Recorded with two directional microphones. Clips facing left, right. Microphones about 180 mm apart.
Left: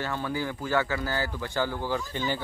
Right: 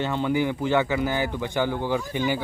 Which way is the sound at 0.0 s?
20° right (ahead or behind).